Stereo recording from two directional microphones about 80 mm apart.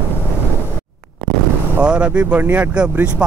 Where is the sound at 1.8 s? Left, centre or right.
Centre.